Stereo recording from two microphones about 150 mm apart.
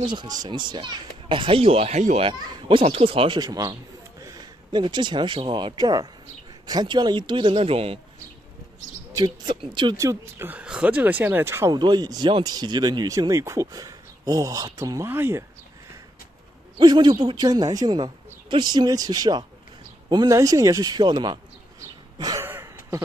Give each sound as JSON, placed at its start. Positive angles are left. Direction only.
{"t": 0.0, "sound": "a child's voice", "side_deg": -30}
{"t": 2.5, "sound": "a child's voice", "side_deg": -35}
{"t": 9.1, "sound": "speech", "side_deg": -30}
{"t": 11.7, "sound": "speech", "side_deg": -30}
{"t": 16.7, "sound": "speech", "side_deg": -30}
{"t": 22.2, "sound": "a sound", "side_deg": -25}